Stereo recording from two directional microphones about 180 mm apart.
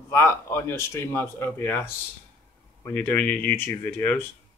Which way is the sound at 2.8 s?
10° left (ahead or behind).